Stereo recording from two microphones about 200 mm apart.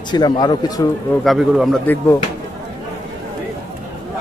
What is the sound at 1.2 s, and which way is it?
Speech, centre (ahead or behind).